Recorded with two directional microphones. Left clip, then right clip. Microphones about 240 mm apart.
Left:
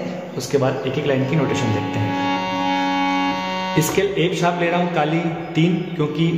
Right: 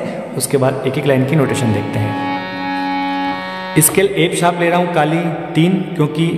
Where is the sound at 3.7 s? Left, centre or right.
Right.